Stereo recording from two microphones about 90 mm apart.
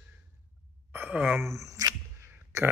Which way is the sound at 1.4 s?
35° right (ahead or behind).